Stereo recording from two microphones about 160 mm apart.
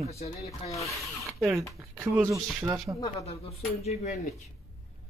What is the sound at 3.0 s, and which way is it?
Speech, 40° left (ahead or behind).